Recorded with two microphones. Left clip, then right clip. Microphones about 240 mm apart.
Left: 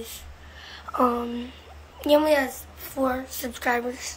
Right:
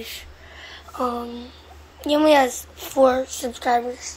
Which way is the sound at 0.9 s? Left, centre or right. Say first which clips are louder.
Left 2 dB; centre.